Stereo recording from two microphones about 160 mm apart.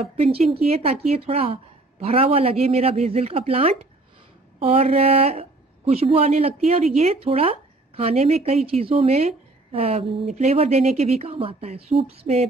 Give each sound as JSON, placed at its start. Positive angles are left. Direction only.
{"t": 0.0, "sound": "speech", "side_deg": -35}